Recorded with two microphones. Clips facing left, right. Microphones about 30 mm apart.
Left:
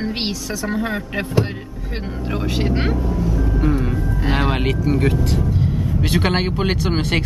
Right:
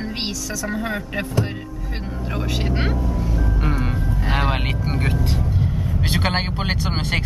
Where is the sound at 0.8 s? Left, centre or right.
Centre.